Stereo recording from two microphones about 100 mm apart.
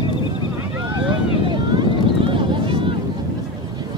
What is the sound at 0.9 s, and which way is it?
Boat, 50° right (ahead or behind).